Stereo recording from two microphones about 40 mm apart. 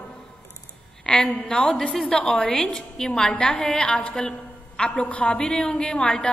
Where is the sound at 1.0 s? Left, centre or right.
Left.